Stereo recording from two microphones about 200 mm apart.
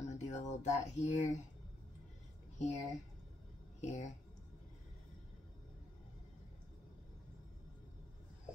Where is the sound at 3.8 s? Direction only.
35° left (ahead or behind).